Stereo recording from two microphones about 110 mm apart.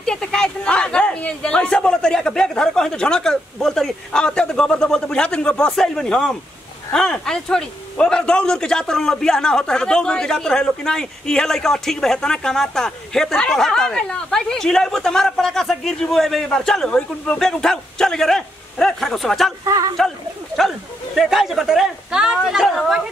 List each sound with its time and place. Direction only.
0.0 s a man's voice: 5° left (ahead or behind)
19.6 s speech: 30° right (ahead or behind)
21.2 s a man's voice: centre (ahead or behind)